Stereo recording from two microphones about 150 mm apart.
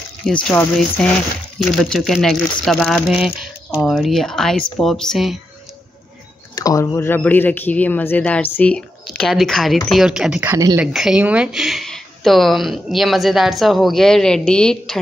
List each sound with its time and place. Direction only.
0.3 s speech: 5° left (ahead or behind)
6.5 s speech: 25° left (ahead or behind); by 10.5 s 5° right (ahead or behind)
10.5 s speech: 25° right (ahead or behind)
10.8 s speech: 5° right (ahead or behind)